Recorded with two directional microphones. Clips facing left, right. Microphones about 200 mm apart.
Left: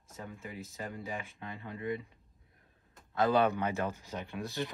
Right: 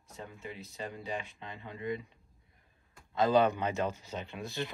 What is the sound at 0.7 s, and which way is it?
Speech, 15° right (ahead or behind).